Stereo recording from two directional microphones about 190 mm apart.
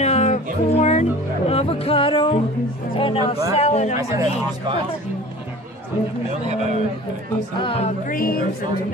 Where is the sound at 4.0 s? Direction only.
20° right (ahead or behind).